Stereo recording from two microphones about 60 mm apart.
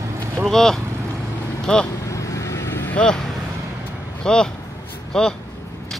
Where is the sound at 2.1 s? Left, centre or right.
Left.